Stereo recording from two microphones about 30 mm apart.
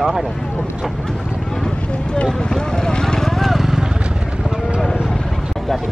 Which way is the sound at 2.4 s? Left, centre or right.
Left.